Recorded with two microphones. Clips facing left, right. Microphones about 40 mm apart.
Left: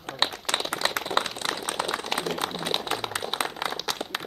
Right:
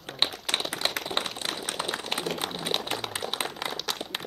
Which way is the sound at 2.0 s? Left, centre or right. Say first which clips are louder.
Left 2 dB; centre.